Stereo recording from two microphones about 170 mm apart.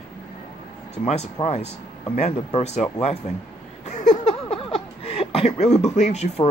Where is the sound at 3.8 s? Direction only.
45° left (ahead or behind).